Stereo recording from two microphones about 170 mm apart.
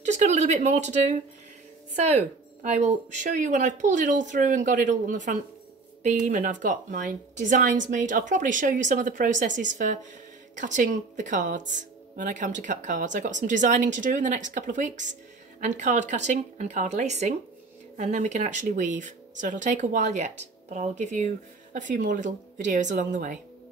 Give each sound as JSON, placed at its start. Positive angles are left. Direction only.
{"t": 0.0, "sound": "a woman's voice", "side_deg": -45}